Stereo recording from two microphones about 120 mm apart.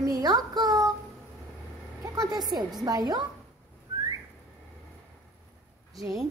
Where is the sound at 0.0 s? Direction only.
30° right (ahead or behind).